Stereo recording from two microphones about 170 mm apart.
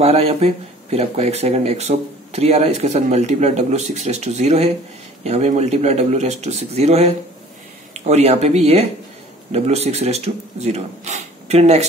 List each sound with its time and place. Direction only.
0.0 s speech: 35° right (ahead or behind)